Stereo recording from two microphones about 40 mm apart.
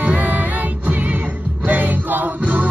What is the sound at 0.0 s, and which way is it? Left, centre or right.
Music, right.